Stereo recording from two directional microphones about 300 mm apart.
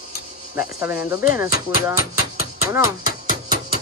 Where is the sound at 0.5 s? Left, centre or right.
Centre.